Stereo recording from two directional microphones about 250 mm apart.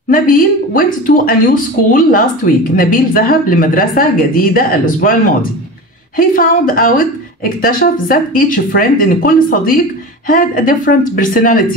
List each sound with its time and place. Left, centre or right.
0.1 s a woman's voice: left
6.1 s a woman's voice: left